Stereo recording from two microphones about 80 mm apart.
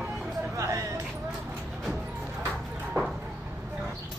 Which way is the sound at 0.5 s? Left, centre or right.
Right.